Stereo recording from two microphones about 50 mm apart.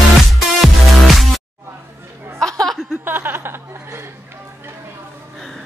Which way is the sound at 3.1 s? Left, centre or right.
Right.